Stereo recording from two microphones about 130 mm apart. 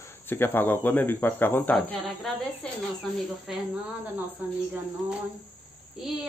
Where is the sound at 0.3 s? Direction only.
15° left (ahead or behind).